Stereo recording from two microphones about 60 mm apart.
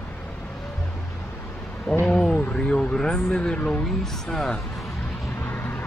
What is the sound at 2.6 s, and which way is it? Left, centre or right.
Speech, centre.